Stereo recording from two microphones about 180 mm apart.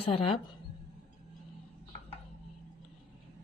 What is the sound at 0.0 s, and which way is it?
Speech, 30° left (ahead or behind).